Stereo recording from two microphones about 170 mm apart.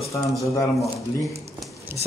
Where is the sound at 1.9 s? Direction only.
15° right (ahead or behind).